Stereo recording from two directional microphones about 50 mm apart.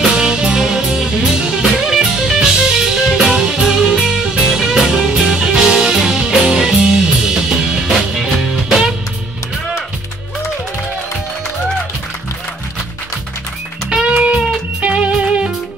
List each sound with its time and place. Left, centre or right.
0.0 s music: centre
7.9 s music: centre
13.8 s music: centre